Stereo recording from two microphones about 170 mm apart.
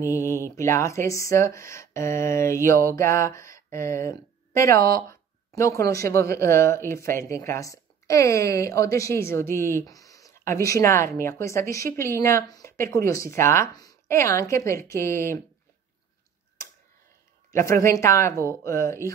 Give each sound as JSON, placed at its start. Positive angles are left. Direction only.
{"t": 0.0, "sound": "speech", "side_deg": 15}
{"t": 17.5, "sound": "a woman's voice", "side_deg": 15}